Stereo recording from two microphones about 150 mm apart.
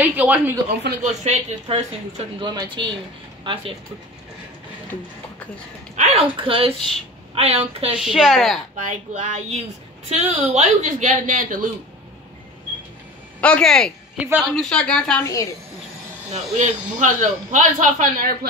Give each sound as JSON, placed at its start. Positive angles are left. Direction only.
{"t": 0.0, "sound": "speech", "side_deg": -10}
{"t": 1.2, "sound": "a woman's voice", "side_deg": -45}
{"t": 2.4, "sound": "speech", "side_deg": -30}
{"t": 5.9, "sound": "speech", "side_deg": -40}
{"t": 7.9, "sound": "speech", "side_deg": 0}
{"t": 8.8, "sound": "a woman's voice", "side_deg": -55}
{"t": 13.4, "sound": "speech", "side_deg": 5}
{"t": 14.1, "sound": "a woman's voice", "side_deg": -10}
{"t": 14.5, "sound": "speech", "side_deg": 5}
{"t": 16.3, "sound": "speech", "side_deg": -50}